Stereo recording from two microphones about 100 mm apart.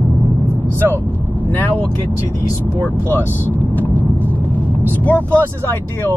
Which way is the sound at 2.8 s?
20° left (ahead or behind).